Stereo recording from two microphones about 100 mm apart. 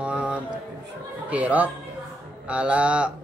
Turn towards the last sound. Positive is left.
turn(degrees=-10)  # may be behind; listen again after turning